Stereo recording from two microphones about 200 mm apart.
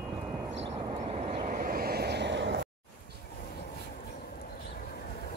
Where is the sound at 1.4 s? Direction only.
45° right (ahead or behind); by 2.5 s 60° right (ahead or behind).